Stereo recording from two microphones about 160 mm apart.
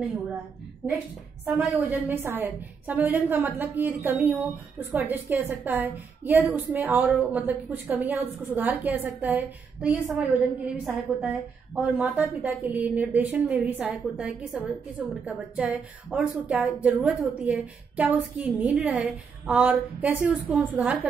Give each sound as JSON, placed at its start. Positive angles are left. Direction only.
{"t": 1.4, "sound": "a woman's voice", "side_deg": -10}